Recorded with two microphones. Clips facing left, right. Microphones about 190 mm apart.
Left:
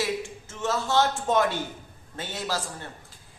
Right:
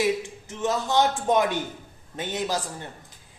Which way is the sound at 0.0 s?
15° right (ahead or behind).